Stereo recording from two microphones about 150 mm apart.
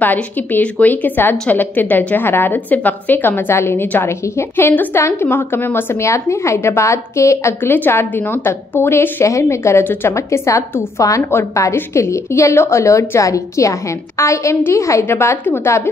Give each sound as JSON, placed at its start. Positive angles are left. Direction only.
{"t": 0.0, "sound": "a woman's voice", "side_deg": 10}